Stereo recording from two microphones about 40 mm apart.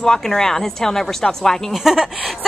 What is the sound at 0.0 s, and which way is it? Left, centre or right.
Speech, centre.